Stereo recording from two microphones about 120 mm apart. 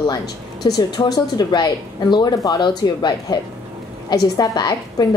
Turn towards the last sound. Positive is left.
turn(degrees=35)  # may be behind; listen again after turning